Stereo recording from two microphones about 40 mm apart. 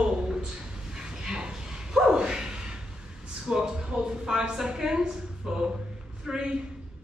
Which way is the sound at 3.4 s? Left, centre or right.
Centre.